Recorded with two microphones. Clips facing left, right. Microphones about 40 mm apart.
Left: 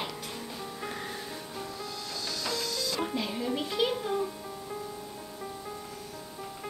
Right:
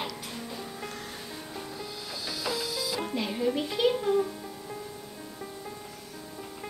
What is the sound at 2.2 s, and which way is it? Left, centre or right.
Music, centre.